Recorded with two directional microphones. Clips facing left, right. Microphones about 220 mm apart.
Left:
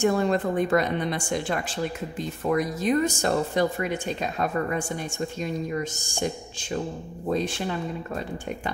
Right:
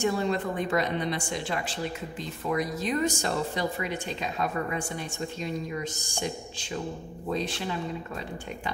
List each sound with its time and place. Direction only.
0.0 s a woman's voice: 50° left (ahead or behind)